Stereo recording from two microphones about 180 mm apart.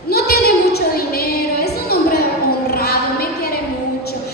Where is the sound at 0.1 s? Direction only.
60° left (ahead or behind).